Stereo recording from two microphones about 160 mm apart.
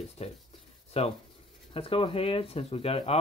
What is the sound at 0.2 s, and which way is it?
Speech, 40° left (ahead or behind).